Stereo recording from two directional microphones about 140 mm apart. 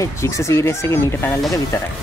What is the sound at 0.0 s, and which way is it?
Speech, 20° left (ahead or behind).